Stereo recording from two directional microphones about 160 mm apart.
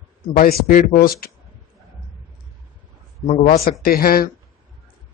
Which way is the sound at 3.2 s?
45° left (ahead or behind).